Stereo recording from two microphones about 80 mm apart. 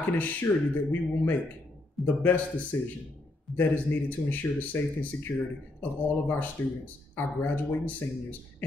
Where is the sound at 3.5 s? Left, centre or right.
Left.